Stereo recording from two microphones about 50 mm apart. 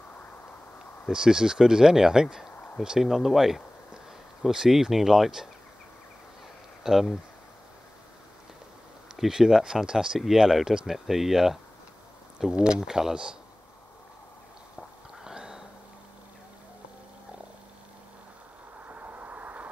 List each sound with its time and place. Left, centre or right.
1.1 s speech: centre
6.8 s speech: centre
9.1 s speech: centre
15.2 s a sound: centre
18.9 s vehicle: right